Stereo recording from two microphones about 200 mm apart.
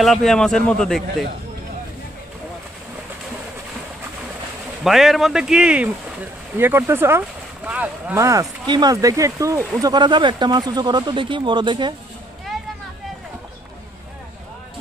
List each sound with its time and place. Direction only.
0.0 s a man's voice: centre (ahead or behind)
4.8 s a man's voice: centre (ahead or behind); by 11.9 s 25° right (ahead or behind)